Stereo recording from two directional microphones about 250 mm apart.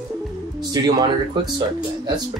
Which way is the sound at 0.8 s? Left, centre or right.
Centre.